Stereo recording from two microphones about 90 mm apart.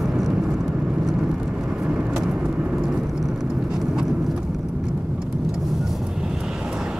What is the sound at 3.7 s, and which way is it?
Vehicle, 5° right (ahead or behind).